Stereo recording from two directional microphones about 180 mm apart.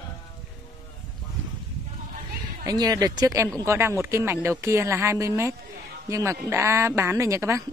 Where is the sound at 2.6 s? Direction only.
20° right (ahead or behind).